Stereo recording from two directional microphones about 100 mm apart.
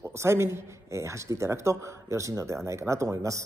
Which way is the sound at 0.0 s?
25° right (ahead or behind).